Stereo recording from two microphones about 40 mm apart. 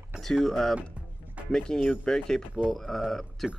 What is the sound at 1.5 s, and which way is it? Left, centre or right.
Speech, centre.